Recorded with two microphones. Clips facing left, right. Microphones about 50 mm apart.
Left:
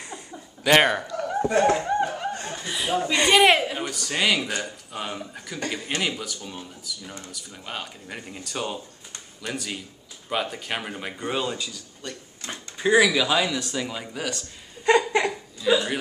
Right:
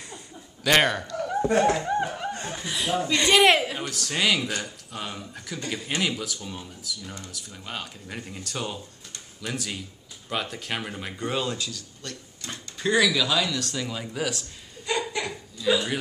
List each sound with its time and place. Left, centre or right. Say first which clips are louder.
0.7 s dog: left 3 dB; centre
1.9 s music: left 2 dB; centre
2.4 s speech: even; centre
14.1 s speech: right 3 dB; centre
14.9 s laughter: left 8 dB; left
15.6 s a sound: left 2 dB; centre